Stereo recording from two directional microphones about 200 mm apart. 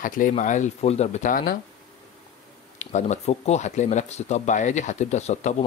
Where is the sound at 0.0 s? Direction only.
40° left (ahead or behind).